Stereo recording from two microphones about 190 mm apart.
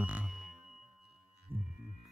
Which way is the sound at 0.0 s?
5° right (ahead or behind).